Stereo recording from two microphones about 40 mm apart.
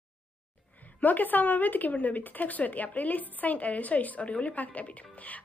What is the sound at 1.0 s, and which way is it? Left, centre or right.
A woman's voice, left.